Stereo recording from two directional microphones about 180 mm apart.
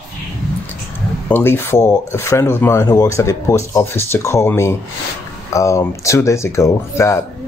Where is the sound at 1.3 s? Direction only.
10° left (ahead or behind).